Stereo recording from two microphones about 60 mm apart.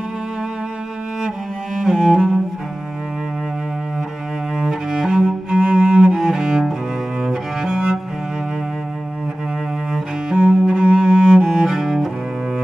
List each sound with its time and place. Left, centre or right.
1.8 s cello: centre
4.6 s cello: centre
9.9 s cello: centre